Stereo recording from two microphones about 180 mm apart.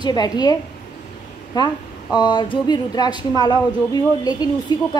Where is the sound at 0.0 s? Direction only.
20° left (ahead or behind).